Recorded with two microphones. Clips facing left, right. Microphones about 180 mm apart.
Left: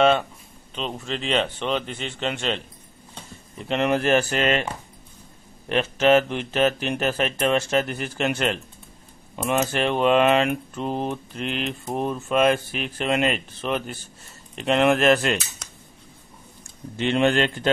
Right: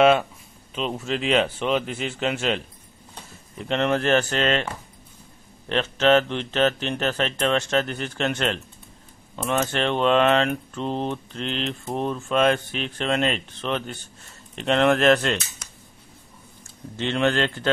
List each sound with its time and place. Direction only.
0.7 s speech: 5° right (ahead or behind)
5.7 s speech: 10° left (ahead or behind)
16.6 s speech: 15° left (ahead or behind)